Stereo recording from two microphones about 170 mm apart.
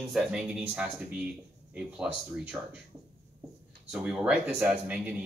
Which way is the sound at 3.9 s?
5° right (ahead or behind).